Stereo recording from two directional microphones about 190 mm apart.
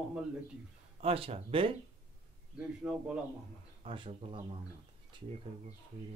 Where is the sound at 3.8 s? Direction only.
25° right (ahead or behind).